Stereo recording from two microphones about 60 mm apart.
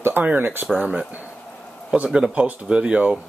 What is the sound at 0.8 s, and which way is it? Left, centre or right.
Speech, right.